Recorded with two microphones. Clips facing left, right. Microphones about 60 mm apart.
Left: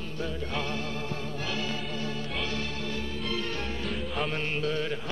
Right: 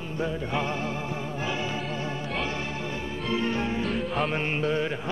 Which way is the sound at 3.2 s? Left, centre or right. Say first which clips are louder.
Right 8 dB; right.